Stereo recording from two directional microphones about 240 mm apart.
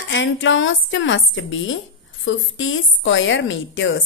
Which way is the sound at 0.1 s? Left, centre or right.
Left.